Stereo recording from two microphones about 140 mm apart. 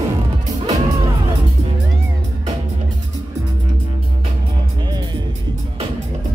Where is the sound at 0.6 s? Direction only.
25° right (ahead or behind).